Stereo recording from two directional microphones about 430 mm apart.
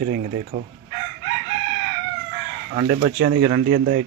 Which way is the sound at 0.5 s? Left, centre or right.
Centre.